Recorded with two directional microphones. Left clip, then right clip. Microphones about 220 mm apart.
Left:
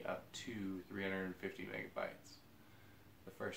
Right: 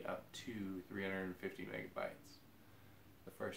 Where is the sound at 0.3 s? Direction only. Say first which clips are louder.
Left 2 dB; 15° right (ahead or behind).